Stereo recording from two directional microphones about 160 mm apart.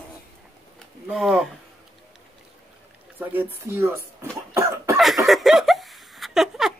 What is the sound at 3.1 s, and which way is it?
Speech, 15° right (ahead or behind).